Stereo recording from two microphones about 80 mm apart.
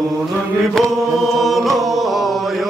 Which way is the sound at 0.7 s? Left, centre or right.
Centre.